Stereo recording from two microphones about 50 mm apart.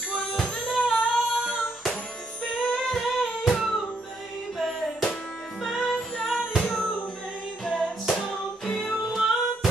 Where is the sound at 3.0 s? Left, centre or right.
Centre.